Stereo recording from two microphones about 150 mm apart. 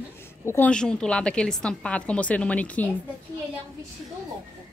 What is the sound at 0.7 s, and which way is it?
A woman's voice, 5° left (ahead or behind).